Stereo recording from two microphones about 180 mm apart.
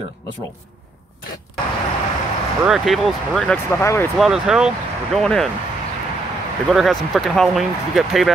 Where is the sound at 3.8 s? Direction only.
15° left (ahead or behind).